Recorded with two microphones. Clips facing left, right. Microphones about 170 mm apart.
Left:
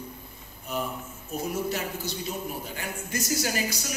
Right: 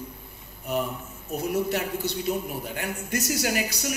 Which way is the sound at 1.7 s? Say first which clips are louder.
Right 4 dB; 65° right (ahead or behind).